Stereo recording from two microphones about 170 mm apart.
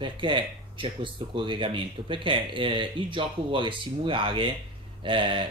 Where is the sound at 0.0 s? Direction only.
30° right (ahead or behind).